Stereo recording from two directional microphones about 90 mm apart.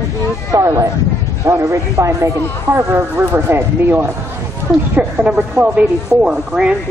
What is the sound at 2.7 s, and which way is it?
Speech, 25° right (ahead or behind).